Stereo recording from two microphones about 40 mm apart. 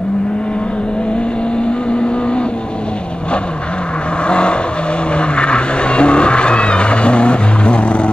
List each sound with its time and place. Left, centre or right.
4.3 s vehicle: left